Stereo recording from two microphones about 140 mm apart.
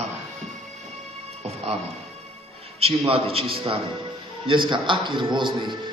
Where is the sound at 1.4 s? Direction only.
50° right (ahead or behind).